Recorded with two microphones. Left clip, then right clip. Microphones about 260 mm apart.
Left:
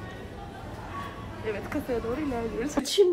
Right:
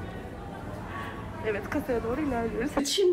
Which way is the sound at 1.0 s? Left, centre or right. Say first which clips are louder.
Right 1 dB; centre.